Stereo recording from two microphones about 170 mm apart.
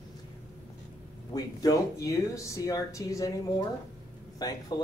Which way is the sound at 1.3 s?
20° left (ahead or behind).